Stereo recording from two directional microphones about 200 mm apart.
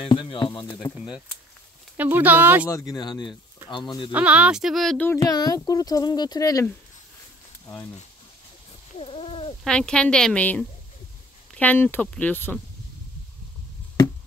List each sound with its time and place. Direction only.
0.0 s speech: 25° left (ahead or behind)
0.9 s a woman's voice: 5° right (ahead or behind)
2.7 s speech: 15° left (ahead or behind)
4.1 s speech: 5° right (ahead or behind); by 6.7 s 15° left (ahead or behind)
8.9 s fowl: 30° left (ahead or behind)
9.7 s a woman's voice: 5° left (ahead or behind)